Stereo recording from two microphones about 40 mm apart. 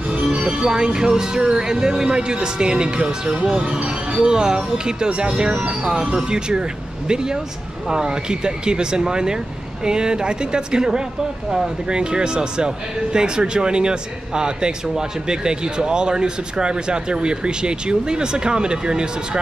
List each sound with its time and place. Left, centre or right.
0.1 s speech: right
7.9 s speech: centre